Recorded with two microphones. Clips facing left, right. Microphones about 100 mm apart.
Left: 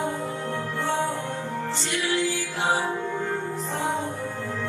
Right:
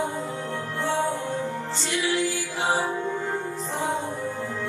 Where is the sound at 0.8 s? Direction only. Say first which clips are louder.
Right 1 dB; 20° left (ahead or behind).